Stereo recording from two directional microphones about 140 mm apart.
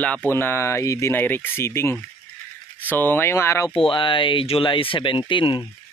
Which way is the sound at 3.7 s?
40° left (ahead or behind).